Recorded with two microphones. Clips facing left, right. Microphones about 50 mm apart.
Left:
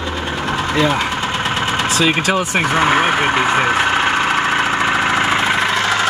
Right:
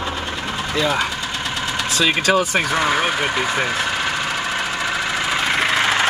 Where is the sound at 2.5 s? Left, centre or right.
Left.